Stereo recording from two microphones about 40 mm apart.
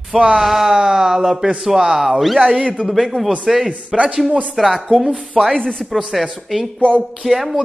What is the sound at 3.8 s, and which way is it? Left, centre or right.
Speech, right.